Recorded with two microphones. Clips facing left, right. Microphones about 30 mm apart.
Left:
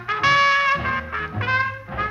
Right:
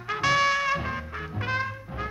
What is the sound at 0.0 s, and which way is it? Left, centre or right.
Music, left.